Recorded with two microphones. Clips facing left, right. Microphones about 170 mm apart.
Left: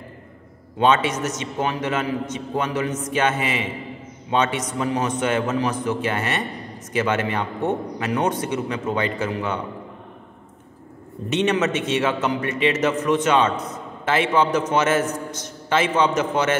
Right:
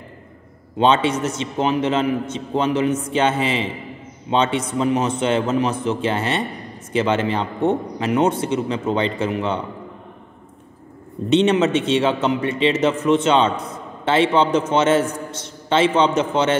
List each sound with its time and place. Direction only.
0.7 s a man's voice: 30° right (ahead or behind)
11.2 s a man's voice: 30° right (ahead or behind)